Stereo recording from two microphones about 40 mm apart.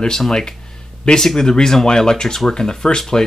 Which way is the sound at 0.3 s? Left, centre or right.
Centre.